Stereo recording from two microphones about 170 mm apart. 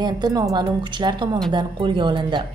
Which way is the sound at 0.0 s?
25° right (ahead or behind).